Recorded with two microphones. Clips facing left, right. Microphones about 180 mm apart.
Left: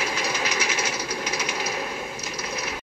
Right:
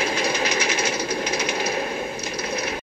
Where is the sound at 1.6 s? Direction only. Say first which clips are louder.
Right 5 dB; 60° right (ahead or behind).